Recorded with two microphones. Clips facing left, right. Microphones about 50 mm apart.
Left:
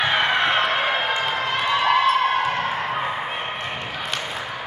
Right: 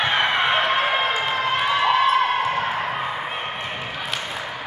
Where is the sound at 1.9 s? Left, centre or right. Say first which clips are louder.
Even; centre.